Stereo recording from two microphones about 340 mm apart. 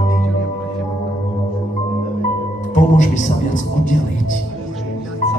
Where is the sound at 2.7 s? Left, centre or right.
Left.